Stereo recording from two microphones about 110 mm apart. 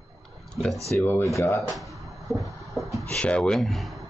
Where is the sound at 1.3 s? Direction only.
30° left (ahead or behind).